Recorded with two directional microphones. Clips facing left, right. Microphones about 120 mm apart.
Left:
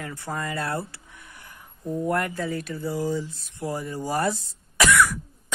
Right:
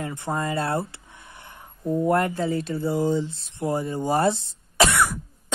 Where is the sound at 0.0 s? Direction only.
20° right (ahead or behind).